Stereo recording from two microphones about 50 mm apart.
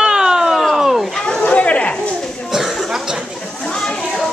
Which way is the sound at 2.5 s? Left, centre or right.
Centre.